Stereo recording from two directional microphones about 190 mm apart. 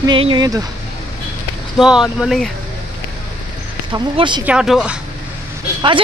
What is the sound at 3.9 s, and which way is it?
Speech, 25° right (ahead or behind).